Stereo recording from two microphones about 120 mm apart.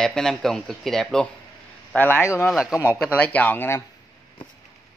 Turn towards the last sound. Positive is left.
turn(degrees=20)  # may be behind; listen again after turning